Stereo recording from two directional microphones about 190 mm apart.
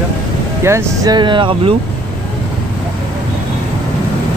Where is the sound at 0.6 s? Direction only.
15° right (ahead or behind).